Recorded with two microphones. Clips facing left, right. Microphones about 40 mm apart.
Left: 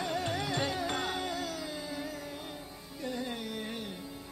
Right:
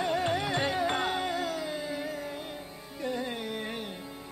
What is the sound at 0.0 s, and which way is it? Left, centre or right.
Music, right.